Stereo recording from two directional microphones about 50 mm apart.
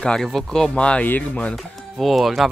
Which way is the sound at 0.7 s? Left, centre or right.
Left.